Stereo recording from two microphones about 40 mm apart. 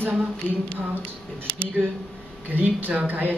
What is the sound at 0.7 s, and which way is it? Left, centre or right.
Speech, right.